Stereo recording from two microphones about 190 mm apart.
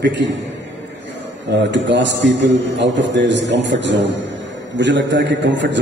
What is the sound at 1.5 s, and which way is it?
A man's voice, 70° right (ahead or behind).